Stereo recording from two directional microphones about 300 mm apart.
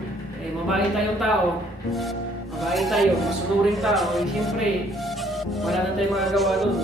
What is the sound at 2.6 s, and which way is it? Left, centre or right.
Speech, centre.